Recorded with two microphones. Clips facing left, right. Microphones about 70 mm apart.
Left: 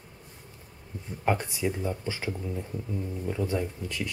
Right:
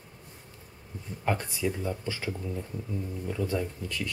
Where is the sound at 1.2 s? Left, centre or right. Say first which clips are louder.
Left 2 dB; centre.